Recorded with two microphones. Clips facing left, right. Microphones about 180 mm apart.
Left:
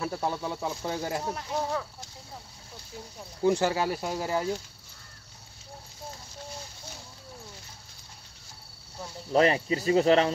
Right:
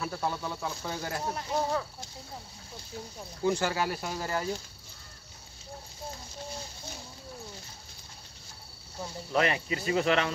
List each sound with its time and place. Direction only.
0.0 s speech: 15° left (ahead or behind)
1.3 s speech: centre (ahead or behind)
3.4 s speech: 20° left (ahead or behind)
9.3 s speech: 35° left (ahead or behind)